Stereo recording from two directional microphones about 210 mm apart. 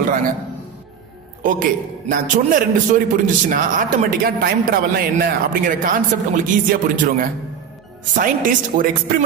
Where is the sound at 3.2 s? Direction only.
40° right (ahead or behind).